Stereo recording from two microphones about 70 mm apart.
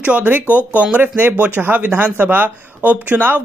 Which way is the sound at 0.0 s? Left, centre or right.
Centre.